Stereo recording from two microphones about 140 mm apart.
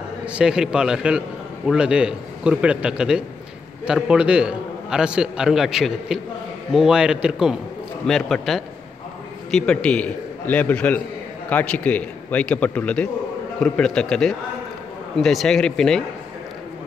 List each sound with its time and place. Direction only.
0.2 s a man's voice: 10° right (ahead or behind)